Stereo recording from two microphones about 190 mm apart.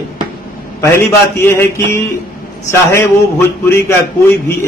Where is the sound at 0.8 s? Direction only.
15° left (ahead or behind).